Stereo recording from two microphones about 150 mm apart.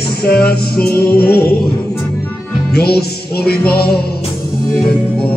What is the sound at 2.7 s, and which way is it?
Music, 90° left.